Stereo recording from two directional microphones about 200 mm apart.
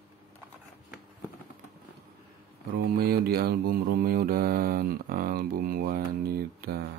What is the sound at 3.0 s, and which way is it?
Mantra, 50° right (ahead or behind).